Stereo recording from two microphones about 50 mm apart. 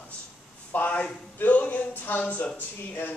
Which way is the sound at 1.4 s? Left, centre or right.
Left.